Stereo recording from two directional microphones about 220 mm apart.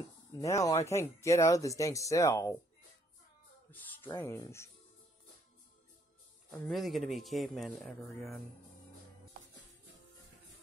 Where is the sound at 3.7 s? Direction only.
10° left (ahead or behind).